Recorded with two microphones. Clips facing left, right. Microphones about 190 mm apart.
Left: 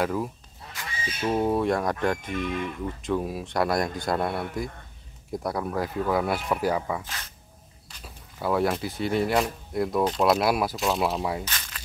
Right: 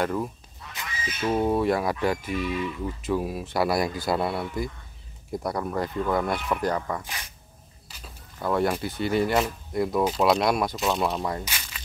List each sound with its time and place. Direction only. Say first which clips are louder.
0.0 s speech: even; 5° left (ahead or behind)
0.8 s music: even; 30° left (ahead or behind)
1.3 s speech: right 1 dB; centre (ahead or behind)
2.5 s speech: right 1 dB; 50° left (ahead or behind)
3.0 s speech: even; 5° right (ahead or behind)
7.1 s speech: right 1 dB; 15° right (ahead or behind)
8.0 s speech: left 1 dB; 5° left (ahead or behind)
11.4 s a sound: even; 10° right (ahead or behind)